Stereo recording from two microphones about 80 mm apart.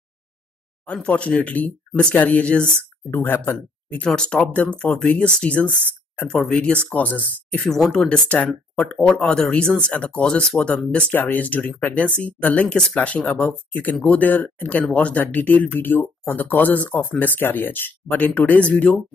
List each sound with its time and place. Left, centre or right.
1.0 s speech: centre
3.1 s speech: left
3.9 s speech: centre
7.7 s speech: centre